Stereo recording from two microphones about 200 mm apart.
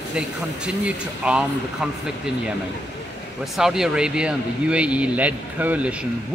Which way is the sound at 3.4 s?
Centre (ahead or behind).